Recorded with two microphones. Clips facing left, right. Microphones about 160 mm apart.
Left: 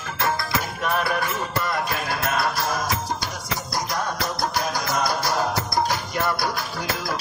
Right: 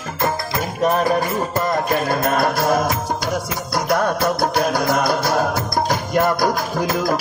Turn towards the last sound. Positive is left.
turn(degrees=-45)  # may be behind; listen again after turning